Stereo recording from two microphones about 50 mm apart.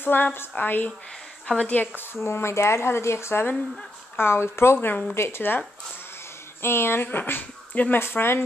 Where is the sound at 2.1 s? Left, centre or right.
Left.